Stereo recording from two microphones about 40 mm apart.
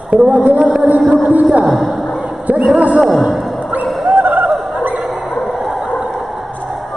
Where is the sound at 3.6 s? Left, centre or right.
Right.